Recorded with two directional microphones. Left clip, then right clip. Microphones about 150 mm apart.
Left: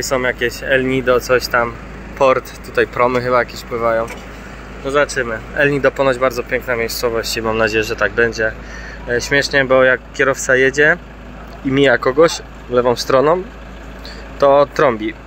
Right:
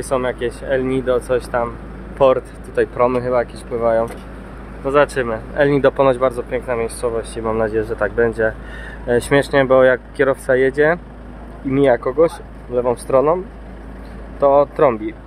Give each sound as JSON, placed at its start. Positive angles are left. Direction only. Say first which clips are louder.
{"t": 0.0, "sound": "speech", "louder": "left 3 dB", "side_deg": 0}
{"t": 11.7, "sound": "speech", "louder": "left 2 dB", "side_deg": 0}
{"t": 14.4, "sound": "speech", "louder": "left 2 dB", "side_deg": 0}